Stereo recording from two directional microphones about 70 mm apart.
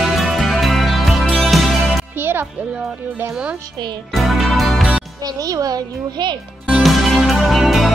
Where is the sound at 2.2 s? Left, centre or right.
Right.